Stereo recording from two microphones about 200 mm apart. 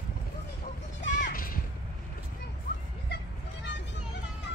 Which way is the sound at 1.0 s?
40° left (ahead or behind).